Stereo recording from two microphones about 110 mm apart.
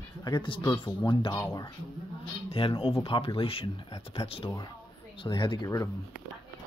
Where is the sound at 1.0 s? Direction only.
50° left (ahead or behind).